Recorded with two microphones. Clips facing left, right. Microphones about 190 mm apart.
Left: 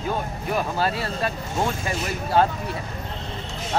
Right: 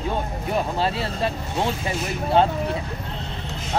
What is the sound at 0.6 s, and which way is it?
Speech, 25° right (ahead or behind).